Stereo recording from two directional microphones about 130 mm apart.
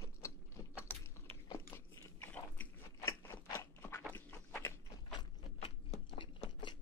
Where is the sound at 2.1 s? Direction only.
15° left (ahead or behind).